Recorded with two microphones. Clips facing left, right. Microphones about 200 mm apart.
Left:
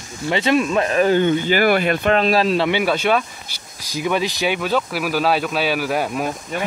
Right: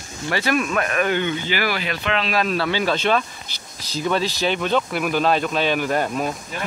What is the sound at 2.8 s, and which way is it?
Speech, 10° left (ahead or behind).